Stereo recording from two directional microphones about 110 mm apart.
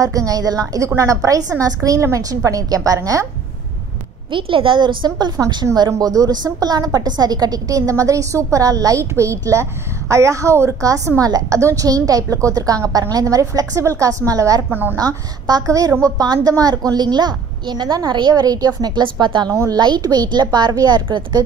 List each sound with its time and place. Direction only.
0.0 s a woman's voice: 30° right (ahead or behind)
4.3 s a woman's voice: 55° right (ahead or behind); by 14.6 s 30° right (ahead or behind)
14.7 s a woman's voice: 15° right (ahead or behind)
15.0 s a woman's voice: 35° right (ahead or behind)
19.5 s a woman's voice: 25° right (ahead or behind)
19.8 s a woman's voice: 40° right (ahead or behind)